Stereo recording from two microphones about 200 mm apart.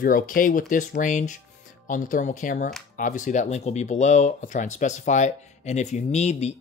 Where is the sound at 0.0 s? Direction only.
45° left (ahead or behind).